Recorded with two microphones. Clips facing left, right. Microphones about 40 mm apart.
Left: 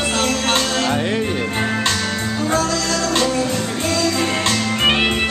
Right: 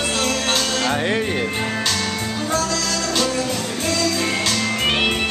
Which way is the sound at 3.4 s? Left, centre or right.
Centre.